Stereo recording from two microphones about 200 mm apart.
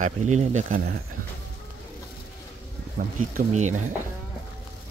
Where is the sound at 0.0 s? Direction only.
35° right (ahead or behind).